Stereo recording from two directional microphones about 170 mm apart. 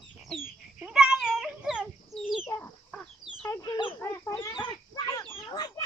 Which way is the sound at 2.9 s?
15° left (ahead or behind).